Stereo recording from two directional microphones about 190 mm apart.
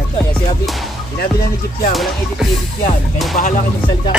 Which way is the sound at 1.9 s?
Centre (ahead or behind).